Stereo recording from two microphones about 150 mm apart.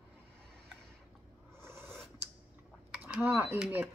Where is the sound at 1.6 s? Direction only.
15° right (ahead or behind).